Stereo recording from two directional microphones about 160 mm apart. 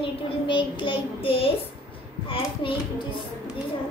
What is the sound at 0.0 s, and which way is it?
Child singing, 30° left (ahead or behind).